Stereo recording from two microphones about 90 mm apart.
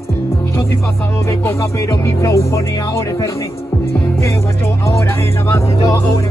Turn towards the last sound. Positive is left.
turn(degrees=35)  # may be behind; listen again after turning